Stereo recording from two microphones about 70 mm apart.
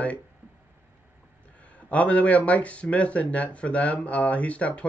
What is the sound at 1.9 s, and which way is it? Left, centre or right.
Speech, centre.